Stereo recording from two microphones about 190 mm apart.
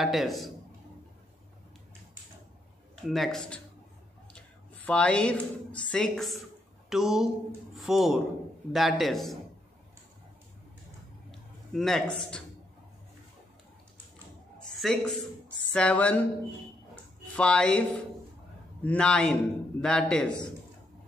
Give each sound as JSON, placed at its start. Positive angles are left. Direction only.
{"t": 0.0, "sound": "speech", "side_deg": 0}
{"t": 3.0, "sound": "a woman's voice", "side_deg": 0}
{"t": 11.7, "sound": "speech", "side_deg": 0}
{"t": 14.8, "sound": "speech", "side_deg": 0}
{"t": 15.7, "sound": "a sound", "side_deg": 5}
{"t": 17.4, "sound": "speech", "side_deg": 5}